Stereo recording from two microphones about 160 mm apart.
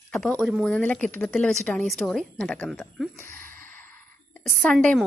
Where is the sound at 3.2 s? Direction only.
60° right (ahead or behind).